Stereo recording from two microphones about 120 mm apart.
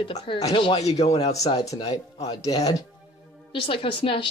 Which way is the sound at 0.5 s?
45° left (ahead or behind).